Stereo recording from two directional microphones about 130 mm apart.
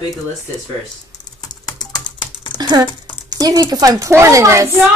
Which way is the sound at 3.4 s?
30° right (ahead or behind).